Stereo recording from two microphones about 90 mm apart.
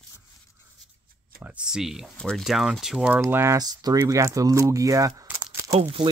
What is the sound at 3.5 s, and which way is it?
Speech, 45° right (ahead or behind).